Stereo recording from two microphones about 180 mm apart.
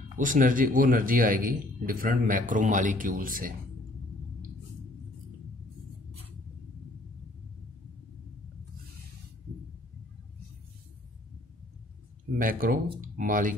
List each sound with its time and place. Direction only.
0.2 s a man's voice: 45° right (ahead or behind)
12.4 s a man's voice: 50° right (ahead or behind)